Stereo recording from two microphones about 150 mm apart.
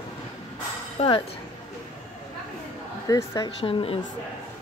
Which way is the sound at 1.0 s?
45° left (ahead or behind).